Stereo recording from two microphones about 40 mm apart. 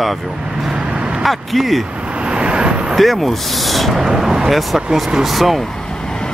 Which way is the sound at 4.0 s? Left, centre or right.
Centre.